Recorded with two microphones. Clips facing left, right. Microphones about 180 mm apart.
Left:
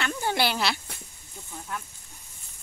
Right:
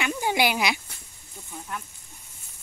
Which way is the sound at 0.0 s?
10° right (ahead or behind).